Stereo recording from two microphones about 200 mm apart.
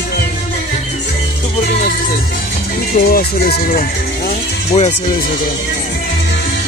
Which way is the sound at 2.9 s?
45° left (ahead or behind).